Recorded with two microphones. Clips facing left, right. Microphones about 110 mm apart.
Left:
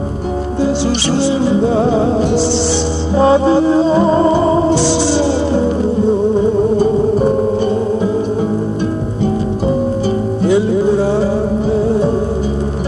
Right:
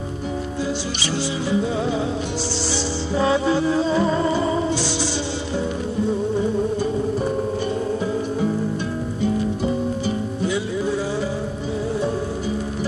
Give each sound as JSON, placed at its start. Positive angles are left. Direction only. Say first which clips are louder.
{"t": 1.1, "sound": "music", "louder": "left 7 dB", "side_deg": 30}
{"t": 1.7, "sound": "music", "louder": "left 10 dB", "side_deg": 50}
{"t": 3.2, "sound": "music", "louder": "left 9 dB", "side_deg": 40}
{"t": 5.0, "sound": "music", "louder": "left 12 dB", "side_deg": 80}
{"t": 6.8, "sound": "music", "louder": "left 10 dB", "side_deg": 50}
{"t": 10.4, "sound": "music", "louder": "left 12 dB", "side_deg": 55}